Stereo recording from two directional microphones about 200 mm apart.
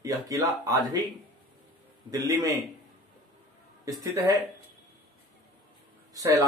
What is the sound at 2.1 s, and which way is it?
Speech, 15° right (ahead or behind).